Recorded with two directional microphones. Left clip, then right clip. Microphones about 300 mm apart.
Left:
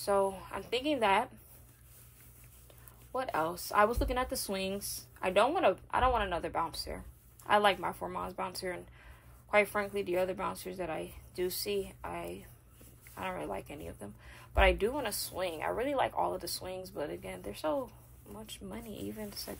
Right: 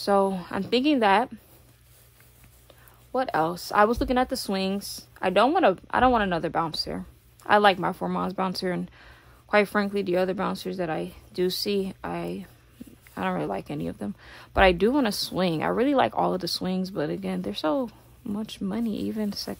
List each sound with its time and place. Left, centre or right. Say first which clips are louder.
0.0 s speech: right 7 dB; right
3.1 s speech: right 8 dB; right